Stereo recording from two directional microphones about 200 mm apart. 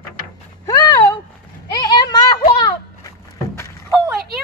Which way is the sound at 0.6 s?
20° left (ahead or behind).